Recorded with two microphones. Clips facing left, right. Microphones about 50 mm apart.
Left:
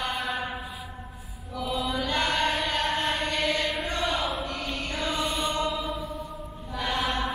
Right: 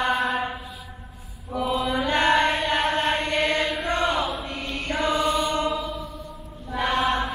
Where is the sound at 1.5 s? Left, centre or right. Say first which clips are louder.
Right 5 dB; right.